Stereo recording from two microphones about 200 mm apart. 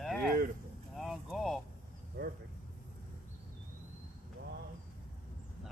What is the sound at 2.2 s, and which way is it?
Speech, 50° right (ahead or behind).